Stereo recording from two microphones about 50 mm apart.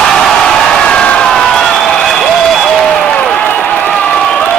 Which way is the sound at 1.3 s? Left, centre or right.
Centre.